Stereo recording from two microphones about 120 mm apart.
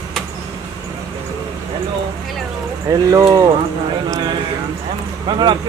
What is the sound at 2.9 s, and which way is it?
Speech, 30° right (ahead or behind).